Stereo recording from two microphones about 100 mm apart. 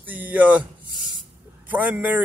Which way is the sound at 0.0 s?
15° right (ahead or behind).